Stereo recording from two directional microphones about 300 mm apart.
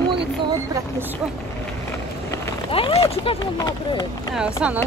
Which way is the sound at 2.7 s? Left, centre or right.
Centre.